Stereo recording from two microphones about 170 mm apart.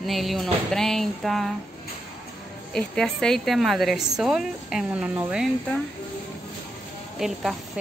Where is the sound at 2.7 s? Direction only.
5° left (ahead or behind).